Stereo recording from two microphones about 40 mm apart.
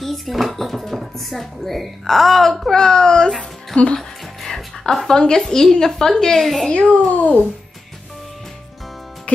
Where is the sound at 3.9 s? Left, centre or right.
Centre.